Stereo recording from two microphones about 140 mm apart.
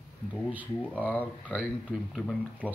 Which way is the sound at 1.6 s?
5° right (ahead or behind).